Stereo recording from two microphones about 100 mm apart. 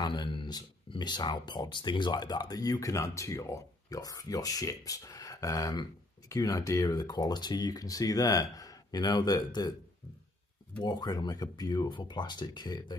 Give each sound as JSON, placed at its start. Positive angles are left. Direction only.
{"t": 0.0, "sound": "speech", "side_deg": 50}
{"t": 10.8, "sound": "speech", "side_deg": 45}